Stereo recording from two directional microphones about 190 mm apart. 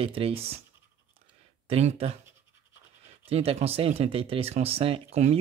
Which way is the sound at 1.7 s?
35° right (ahead or behind).